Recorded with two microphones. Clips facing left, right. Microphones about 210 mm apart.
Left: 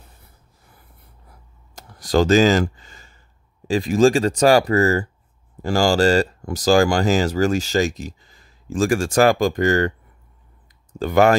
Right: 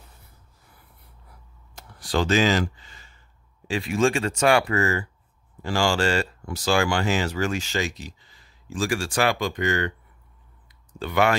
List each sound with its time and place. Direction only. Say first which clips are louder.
1.8 s a sound: left 7 dB; 40° left (ahead or behind)
3.6 s speech: left 7 dB; 40° left (ahead or behind)
11.0 s speech: left 7 dB; 45° left (ahead or behind)